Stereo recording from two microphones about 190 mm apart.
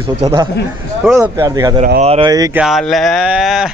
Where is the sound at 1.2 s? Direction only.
15° right (ahead or behind).